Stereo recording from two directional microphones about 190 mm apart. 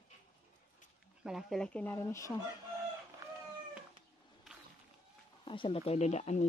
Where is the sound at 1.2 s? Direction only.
5° right (ahead or behind); by 2.4 s 15° left (ahead or behind).